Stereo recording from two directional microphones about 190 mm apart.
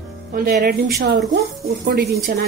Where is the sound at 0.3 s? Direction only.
50° right (ahead or behind).